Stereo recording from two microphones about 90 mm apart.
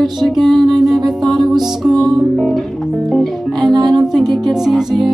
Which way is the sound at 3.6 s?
50° right (ahead or behind).